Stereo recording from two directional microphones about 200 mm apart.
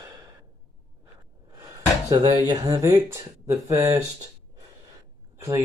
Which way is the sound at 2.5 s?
20° right (ahead or behind).